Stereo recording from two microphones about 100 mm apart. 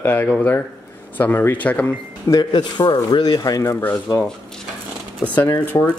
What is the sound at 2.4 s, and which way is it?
A man's voice, 50° left (ahead or behind).